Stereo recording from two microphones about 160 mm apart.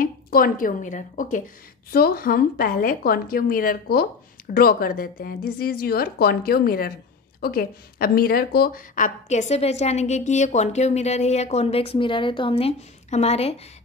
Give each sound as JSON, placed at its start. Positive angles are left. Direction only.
{"t": 0.0, "sound": "a woman's voice", "side_deg": 60}